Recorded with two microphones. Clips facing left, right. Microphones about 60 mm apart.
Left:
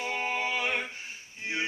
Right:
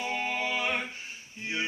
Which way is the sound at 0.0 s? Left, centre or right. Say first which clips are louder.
Even; left.